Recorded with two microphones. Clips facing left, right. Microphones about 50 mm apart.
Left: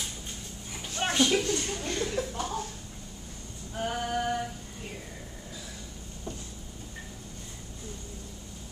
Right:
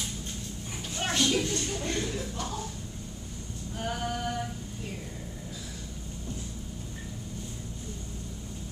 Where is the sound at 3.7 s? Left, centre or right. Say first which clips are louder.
Left 3 dB; centre.